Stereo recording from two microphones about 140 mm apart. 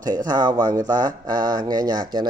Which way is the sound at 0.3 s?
30° right (ahead or behind).